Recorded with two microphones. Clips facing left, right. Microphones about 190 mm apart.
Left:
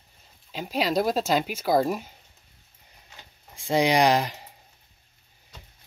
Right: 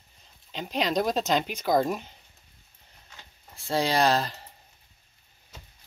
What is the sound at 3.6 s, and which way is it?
Speech, 15° left (ahead or behind).